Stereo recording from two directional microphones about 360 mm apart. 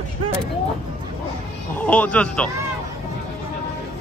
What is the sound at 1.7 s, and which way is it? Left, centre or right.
Speech, centre.